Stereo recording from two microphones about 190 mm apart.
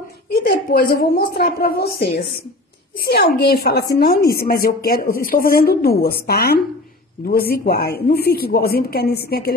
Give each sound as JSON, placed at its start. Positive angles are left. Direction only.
{"t": 0.3, "sound": "a woman's voice", "side_deg": 55}